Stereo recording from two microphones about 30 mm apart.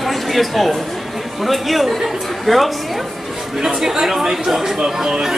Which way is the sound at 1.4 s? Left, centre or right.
Centre.